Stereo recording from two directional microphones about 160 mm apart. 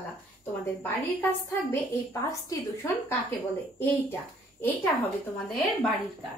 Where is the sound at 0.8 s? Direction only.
15° left (ahead or behind).